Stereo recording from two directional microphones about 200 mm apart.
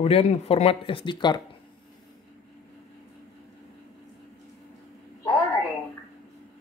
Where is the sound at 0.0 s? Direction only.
30° left (ahead or behind).